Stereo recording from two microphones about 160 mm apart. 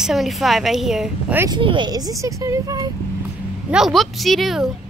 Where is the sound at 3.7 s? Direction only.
Centre (ahead or behind).